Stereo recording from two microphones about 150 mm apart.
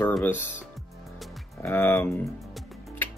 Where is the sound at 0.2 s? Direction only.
15° left (ahead or behind).